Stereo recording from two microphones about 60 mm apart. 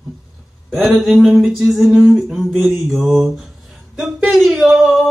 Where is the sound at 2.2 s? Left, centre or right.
Centre.